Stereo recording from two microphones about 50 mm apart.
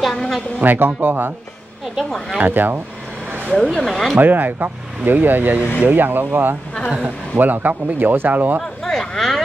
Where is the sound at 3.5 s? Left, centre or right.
Centre.